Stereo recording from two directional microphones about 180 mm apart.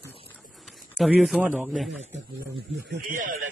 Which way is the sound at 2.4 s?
70° right (ahead or behind).